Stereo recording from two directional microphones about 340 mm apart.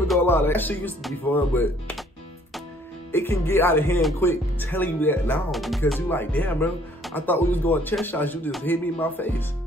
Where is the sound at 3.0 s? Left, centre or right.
Centre.